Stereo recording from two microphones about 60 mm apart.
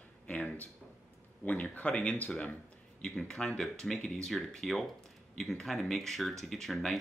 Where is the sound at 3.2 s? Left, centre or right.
Centre.